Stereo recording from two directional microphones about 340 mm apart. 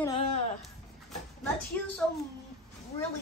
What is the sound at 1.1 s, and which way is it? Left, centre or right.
Speech, centre.